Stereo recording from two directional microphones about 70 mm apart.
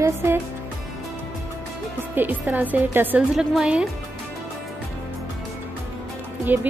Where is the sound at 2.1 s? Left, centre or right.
Right.